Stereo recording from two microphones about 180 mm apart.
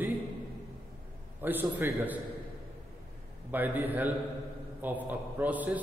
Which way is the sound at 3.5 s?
10° right (ahead or behind).